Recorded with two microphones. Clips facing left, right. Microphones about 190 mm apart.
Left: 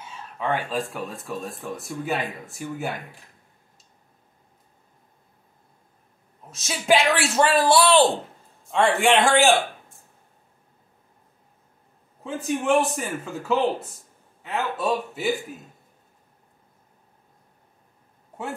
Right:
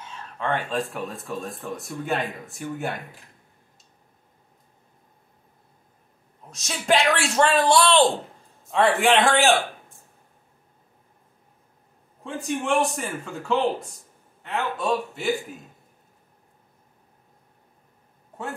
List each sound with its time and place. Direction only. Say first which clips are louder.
0.0 s speech: left 1 dB; 5° left (ahead or behind)
6.5 s speech: left 2 dB; centre (ahead or behind)
12.2 s speech: left 2 dB; centre (ahead or behind)